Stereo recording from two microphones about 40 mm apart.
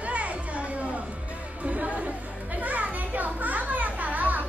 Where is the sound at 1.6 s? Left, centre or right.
Right.